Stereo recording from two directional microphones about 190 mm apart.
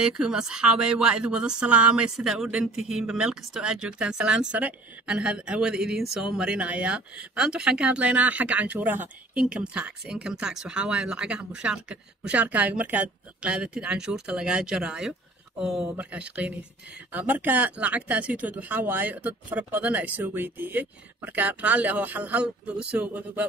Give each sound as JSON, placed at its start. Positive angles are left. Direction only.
{"t": 0.0, "sound": "speech", "side_deg": -5}